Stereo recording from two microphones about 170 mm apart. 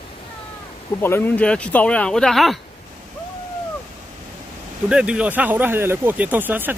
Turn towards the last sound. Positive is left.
turn(degrees=-10)  # may be behind; listen again after turning